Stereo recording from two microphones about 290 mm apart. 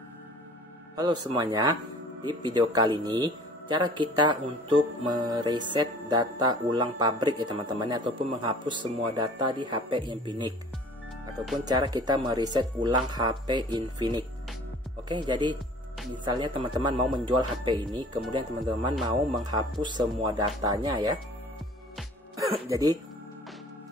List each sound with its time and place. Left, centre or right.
0.9 s speech: centre
11.6 s speech: centre
22.4 s music: centre